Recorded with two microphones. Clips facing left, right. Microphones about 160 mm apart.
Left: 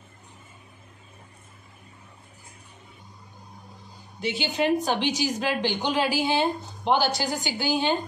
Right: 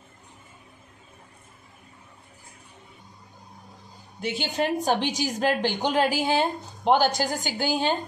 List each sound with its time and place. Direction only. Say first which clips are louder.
4.2 s a woman's voice: left 1 dB; 45° right (ahead or behind)